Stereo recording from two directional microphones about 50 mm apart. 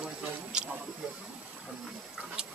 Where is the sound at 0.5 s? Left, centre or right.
Centre.